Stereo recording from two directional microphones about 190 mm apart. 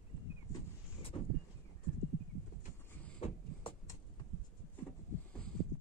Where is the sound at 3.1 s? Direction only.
30° left (ahead or behind).